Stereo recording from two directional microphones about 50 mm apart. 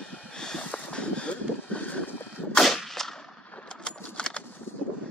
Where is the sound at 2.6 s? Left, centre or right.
Centre.